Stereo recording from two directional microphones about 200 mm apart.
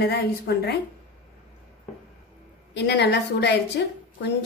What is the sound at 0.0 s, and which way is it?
Speech, 55° left (ahead or behind).